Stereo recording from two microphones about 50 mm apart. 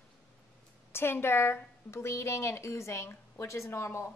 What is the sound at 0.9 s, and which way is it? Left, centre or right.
A woman's voice, left.